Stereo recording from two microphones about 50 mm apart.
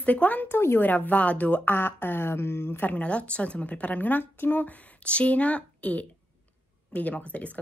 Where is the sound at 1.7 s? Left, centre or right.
Left.